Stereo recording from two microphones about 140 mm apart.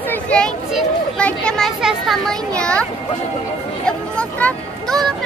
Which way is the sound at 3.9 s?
5° left (ahead or behind).